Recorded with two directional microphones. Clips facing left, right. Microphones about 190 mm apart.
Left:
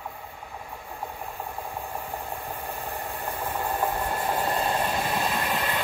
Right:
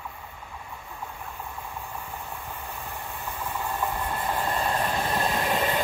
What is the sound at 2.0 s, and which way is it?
Vehicle, 35° left (ahead or behind).